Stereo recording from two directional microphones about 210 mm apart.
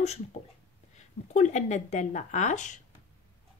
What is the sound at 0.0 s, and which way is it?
Speech, 30° left (ahead or behind).